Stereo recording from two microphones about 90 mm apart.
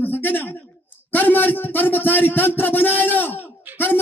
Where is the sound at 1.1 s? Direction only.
20° left (ahead or behind).